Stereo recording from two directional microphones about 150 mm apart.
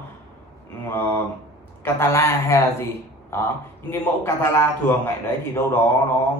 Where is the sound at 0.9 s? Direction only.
15° left (ahead or behind).